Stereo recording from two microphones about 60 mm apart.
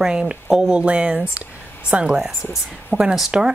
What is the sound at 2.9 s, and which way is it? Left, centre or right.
Speech, left.